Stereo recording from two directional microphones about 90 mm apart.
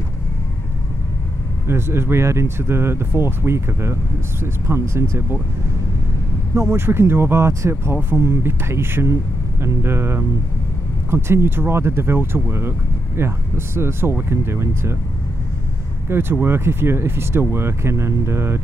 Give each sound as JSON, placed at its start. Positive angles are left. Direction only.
{"t": 1.7, "sound": "speech", "side_deg": -30}
{"t": 6.5, "sound": "speech", "side_deg": -30}
{"t": 16.1, "sound": "speech", "side_deg": -25}